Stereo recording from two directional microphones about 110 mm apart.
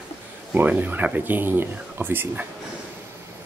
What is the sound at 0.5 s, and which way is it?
Speech, 15° right (ahead or behind).